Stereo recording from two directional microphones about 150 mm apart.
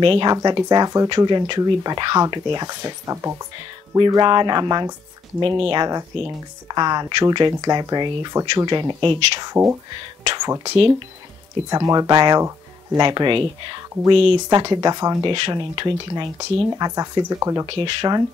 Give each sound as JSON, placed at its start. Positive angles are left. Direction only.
{"t": 0.0, "sound": "speech", "side_deg": -35}
{"t": 10.2, "sound": "a sound", "side_deg": -30}
{"t": 11.7, "sound": "speech", "side_deg": -25}
{"t": 15.3, "sound": "speech", "side_deg": -35}
{"t": 17.6, "sound": "speech", "side_deg": -35}